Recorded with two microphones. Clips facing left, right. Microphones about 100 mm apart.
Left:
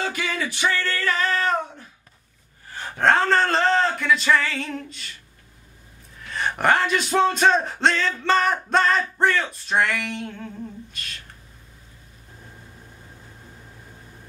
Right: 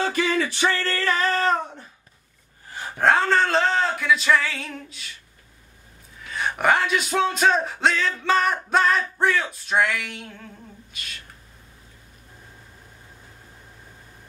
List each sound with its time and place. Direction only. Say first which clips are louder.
0.0 s a sound: right 4 dB; 30° right (ahead or behind)
2.7 s speech: even; 10° right (ahead or behind)
6.2 s speech: even; centre (ahead or behind)